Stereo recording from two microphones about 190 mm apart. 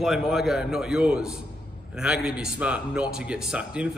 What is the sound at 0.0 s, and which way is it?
A man's voice, centre (ahead or behind).